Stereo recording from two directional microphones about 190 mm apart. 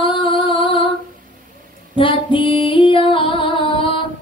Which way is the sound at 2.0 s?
25° left (ahead or behind).